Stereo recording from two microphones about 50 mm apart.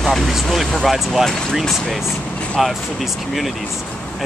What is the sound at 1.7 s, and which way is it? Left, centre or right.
Speech, centre.